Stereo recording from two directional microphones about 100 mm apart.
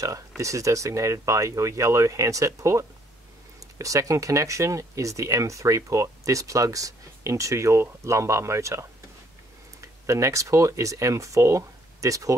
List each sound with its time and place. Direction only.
0.4 s speech: 30° right (ahead or behind)